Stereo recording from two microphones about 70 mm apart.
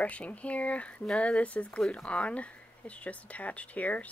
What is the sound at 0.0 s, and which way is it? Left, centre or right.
Speech, centre.